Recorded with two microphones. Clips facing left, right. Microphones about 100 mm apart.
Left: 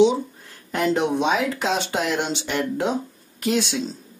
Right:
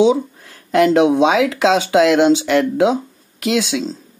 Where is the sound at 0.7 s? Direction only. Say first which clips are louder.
Right 9 dB; 90° right.